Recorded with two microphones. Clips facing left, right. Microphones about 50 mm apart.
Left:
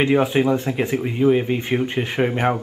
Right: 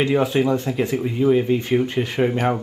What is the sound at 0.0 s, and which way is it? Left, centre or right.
Speech, left.